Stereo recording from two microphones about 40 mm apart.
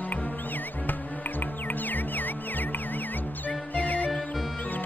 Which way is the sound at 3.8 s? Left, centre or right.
Left.